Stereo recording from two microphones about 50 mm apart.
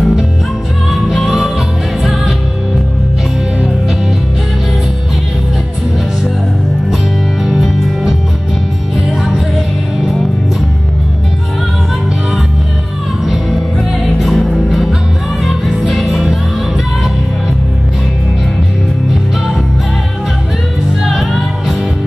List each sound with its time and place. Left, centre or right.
1.0 s music: centre
7.6 s music: centre
13.2 s music: centre
14.7 s music: centre
21.0 s music: centre